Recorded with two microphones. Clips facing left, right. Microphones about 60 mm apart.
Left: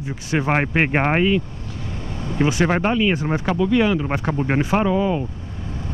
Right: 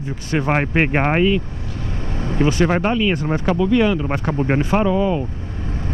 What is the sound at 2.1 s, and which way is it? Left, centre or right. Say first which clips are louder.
Vehicle: right 3 dB; right.